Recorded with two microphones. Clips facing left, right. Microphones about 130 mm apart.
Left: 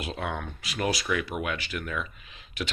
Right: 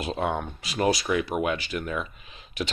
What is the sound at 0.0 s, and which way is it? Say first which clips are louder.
Speech: right 5 dB; 30° right (ahead or behind).